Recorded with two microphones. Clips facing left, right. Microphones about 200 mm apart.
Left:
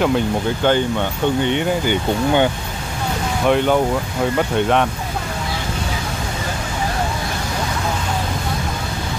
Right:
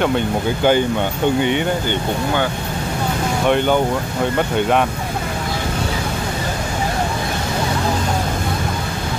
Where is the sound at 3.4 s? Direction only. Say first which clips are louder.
Left 1 dB; centre (ahead or behind).